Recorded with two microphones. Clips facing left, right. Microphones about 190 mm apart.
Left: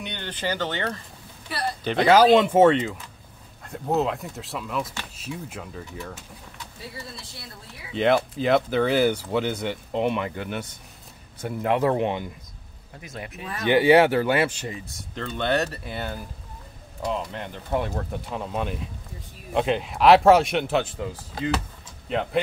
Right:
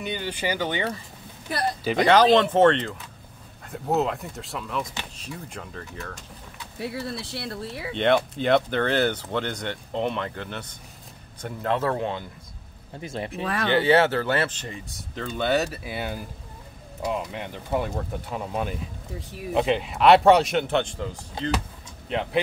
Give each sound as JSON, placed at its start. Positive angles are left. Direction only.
{"t": 0.0, "sound": "speech", "side_deg": -5}
{"t": 1.9, "sound": "speech", "side_deg": 0}
{"t": 6.8, "sound": "speech", "side_deg": -65}
{"t": 7.9, "sound": "speech", "side_deg": 0}
{"t": 13.0, "sound": "speech", "side_deg": -30}
{"t": 13.4, "sound": "speech", "side_deg": -90}
{"t": 13.7, "sound": "speech", "side_deg": 15}